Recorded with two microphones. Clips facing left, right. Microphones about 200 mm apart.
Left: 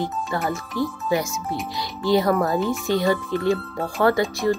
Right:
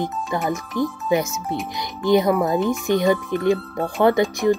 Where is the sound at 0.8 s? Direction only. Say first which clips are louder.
Right 2 dB; 20° right (ahead or behind).